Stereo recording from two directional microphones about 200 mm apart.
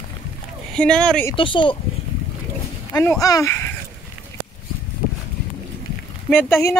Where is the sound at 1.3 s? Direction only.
25° left (ahead or behind).